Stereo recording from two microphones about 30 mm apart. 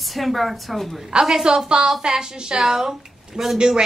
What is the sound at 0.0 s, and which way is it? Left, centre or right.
A woman's voice, centre.